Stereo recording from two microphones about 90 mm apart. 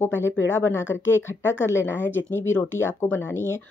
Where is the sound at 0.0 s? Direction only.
25° left (ahead or behind).